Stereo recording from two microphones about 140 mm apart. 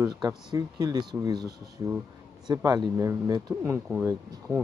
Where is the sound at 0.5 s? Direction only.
25° right (ahead or behind).